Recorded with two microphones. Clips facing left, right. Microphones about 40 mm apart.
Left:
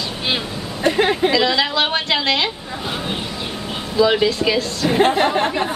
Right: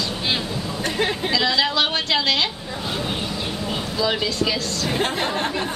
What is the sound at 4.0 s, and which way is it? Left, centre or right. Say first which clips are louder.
A woman's voice: left 8 dB; centre.